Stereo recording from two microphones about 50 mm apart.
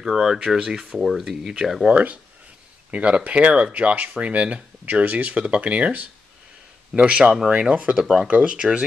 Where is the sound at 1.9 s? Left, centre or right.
Right.